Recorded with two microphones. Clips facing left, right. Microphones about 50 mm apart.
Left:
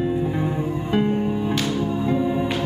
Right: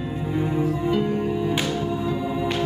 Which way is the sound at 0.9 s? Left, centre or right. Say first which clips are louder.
Left 2 dB; left.